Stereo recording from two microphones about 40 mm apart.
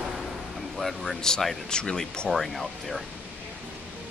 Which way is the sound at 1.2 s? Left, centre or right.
Centre.